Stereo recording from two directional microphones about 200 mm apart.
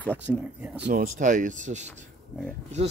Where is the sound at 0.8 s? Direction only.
45° right (ahead or behind).